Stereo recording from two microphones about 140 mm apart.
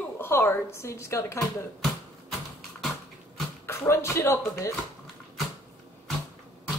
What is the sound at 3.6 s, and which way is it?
Music, 20° left (ahead or behind).